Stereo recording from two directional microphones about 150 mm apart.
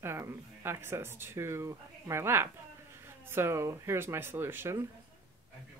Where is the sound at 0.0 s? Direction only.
15° right (ahead or behind).